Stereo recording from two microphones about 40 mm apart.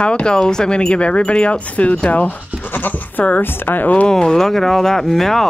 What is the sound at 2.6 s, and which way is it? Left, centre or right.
Speech, left.